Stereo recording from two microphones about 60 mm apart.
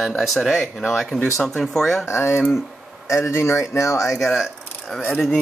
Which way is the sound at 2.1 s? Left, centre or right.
Left.